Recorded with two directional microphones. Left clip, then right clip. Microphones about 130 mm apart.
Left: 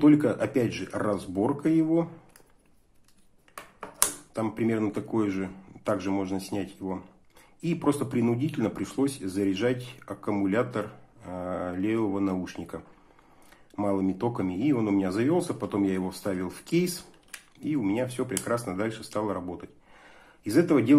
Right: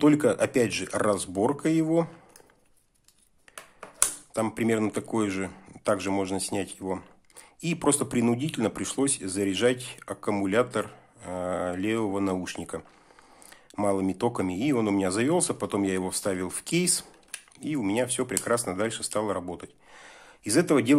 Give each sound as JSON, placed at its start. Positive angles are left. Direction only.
{"t": 0.0, "sound": "speech", "side_deg": -35}
{"t": 4.3, "sound": "speech", "side_deg": -35}